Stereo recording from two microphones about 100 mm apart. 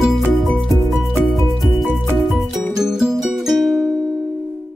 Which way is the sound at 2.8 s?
5° right (ahead or behind).